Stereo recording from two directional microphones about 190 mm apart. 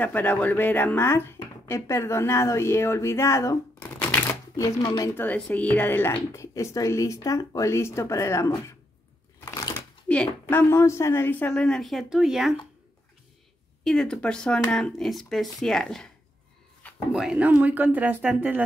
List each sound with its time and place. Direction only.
0.0 s speech: 10° left (ahead or behind)
9.4 s a sound: 15° left (ahead or behind)
10.0 s a woman's voice: 10° left (ahead or behind)
13.8 s a woman's voice: 5° left (ahead or behind)
17.1 s speech: 5° right (ahead or behind)